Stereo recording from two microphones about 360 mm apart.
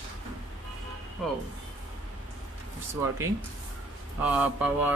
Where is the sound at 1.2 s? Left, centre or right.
Centre.